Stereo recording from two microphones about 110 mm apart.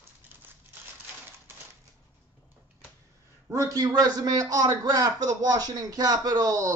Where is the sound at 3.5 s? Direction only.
30° right (ahead or behind).